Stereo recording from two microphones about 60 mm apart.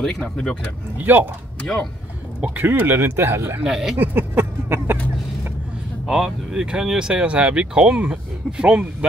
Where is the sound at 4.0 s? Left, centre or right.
Right.